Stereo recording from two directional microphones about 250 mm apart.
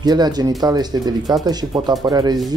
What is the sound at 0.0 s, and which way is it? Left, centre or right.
Speech, centre.